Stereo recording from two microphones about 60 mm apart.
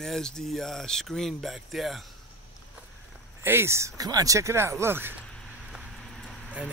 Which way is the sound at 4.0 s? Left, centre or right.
Right.